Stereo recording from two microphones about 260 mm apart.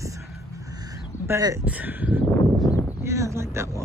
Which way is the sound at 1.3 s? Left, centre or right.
Centre.